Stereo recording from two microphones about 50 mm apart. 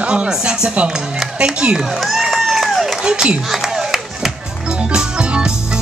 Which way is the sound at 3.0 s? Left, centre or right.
Centre.